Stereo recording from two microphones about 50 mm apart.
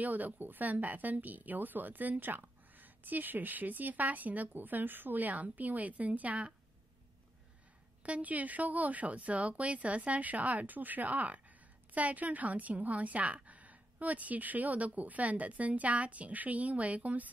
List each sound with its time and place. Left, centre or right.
0.0 s a woman's voice: right
8.0 s a woman's voice: right